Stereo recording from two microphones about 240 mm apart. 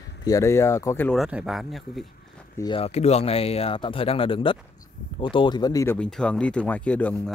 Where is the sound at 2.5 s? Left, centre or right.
Left.